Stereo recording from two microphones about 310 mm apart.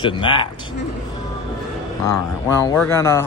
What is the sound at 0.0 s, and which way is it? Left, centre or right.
Speech, centre.